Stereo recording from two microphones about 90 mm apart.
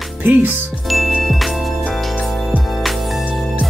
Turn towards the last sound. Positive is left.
turn(degrees=0)  # may be behind; listen again after turning